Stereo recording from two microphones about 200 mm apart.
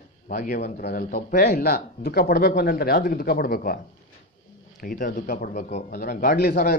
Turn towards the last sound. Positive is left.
turn(degrees=50)  # may be behind; listen again after turning